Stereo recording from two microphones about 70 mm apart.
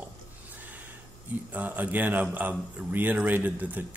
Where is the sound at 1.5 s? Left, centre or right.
Right.